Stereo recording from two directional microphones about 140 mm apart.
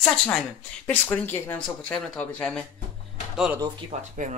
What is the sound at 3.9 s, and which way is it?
Speech, 60° right (ahead or behind).